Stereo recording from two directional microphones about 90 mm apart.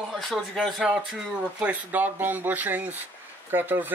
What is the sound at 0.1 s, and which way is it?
Speech, centre (ahead or behind).